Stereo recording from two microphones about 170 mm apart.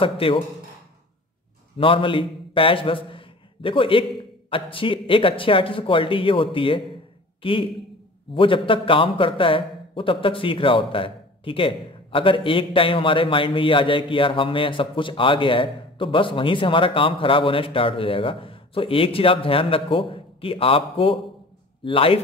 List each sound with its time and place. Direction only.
0.0 s a man's voice: 30° left (ahead or behind)
1.8 s a man's voice: 30° left (ahead or behind)